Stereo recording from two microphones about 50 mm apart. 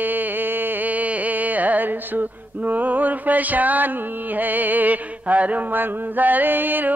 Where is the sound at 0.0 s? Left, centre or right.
Right.